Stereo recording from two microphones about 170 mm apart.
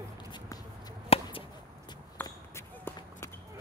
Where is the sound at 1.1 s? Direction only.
30° left (ahead or behind).